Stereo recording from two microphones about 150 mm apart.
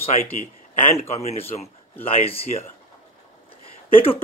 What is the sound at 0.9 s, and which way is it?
Speech, 45° left (ahead or behind).